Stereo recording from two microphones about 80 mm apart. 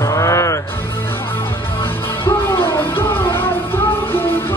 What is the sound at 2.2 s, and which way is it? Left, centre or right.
Music, left.